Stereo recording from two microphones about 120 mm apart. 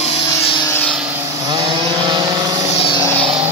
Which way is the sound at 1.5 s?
40° right (ahead or behind).